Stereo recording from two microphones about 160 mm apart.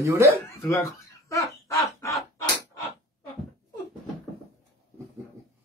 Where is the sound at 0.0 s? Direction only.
20° right (ahead or behind).